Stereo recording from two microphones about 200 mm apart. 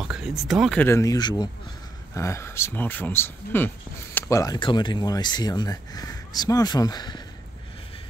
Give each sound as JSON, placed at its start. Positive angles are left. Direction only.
{"t": 0.0, "sound": "speech", "side_deg": 0}
{"t": 0.8, "sound": "speech", "side_deg": 15}